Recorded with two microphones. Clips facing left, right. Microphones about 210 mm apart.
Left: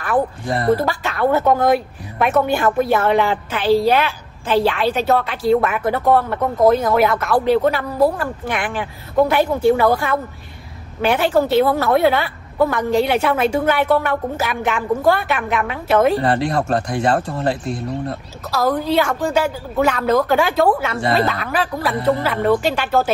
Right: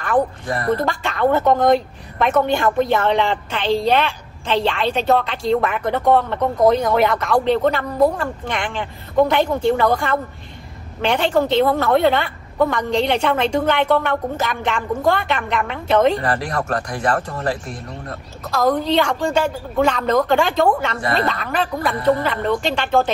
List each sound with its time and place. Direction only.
0.5 s speech: 30° left (ahead or behind)
0.7 s a woman's voice: 5° left (ahead or behind)
16.2 s speech: 25° left (ahead or behind)
18.5 s a woman's voice: 5° left (ahead or behind)